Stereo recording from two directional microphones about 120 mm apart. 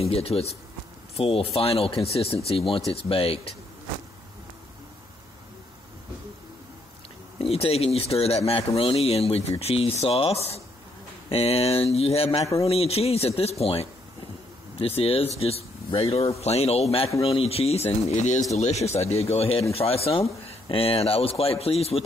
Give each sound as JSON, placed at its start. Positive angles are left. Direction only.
{"t": 0.0, "sound": "speech", "side_deg": 55}
{"t": 7.3, "sound": "speech", "side_deg": 55}